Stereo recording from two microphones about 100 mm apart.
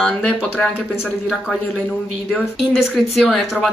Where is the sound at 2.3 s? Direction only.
Centre (ahead or behind).